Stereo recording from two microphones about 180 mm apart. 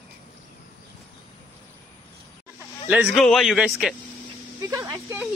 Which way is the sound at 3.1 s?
Centre (ahead or behind).